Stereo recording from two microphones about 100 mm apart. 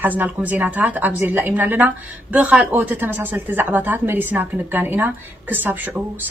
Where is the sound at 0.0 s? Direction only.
15° right (ahead or behind).